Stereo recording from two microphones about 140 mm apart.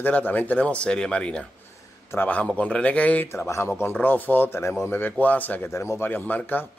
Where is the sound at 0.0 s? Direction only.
15° left (ahead or behind).